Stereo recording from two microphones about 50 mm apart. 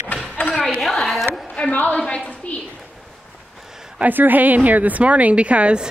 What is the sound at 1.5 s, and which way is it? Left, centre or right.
Speech, left.